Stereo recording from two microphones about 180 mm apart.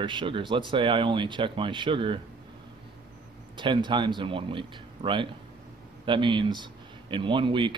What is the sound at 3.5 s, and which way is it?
Speech, 25° right (ahead or behind).